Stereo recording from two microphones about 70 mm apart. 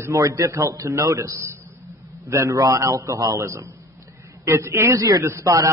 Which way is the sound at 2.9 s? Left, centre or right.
Right.